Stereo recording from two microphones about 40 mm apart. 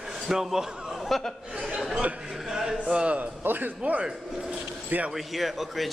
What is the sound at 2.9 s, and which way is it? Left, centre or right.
Speech, right.